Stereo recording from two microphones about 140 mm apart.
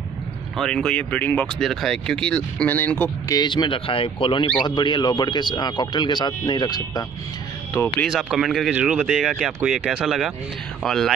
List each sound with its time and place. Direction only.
0.6 s speech: 5° left (ahead or behind)
3.3 s speech: 30° left (ahead or behind)
8.1 s speech: 5° right (ahead or behind)